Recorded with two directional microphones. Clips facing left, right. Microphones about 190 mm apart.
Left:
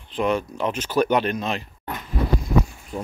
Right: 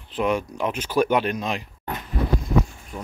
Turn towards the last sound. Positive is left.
turn(degrees=30)  # may be behind; listen again after turning